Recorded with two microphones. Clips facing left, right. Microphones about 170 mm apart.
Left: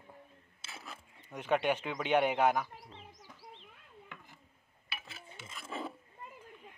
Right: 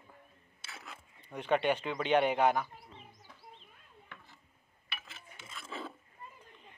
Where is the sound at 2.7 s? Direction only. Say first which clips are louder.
Left 1 dB; 90° left.